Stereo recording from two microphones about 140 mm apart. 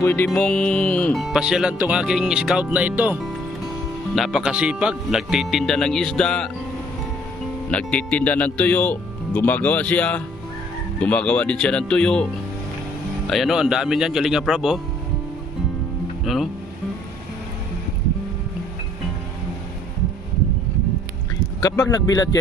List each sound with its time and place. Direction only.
0.0 s speech: 15° left (ahead or behind)
7.7 s speech: 10° left (ahead or behind)
13.3 s speech: centre (ahead or behind)
21.9 s speech: 30° left (ahead or behind)